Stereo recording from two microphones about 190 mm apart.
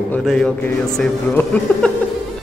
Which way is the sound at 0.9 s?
5° left (ahead or behind).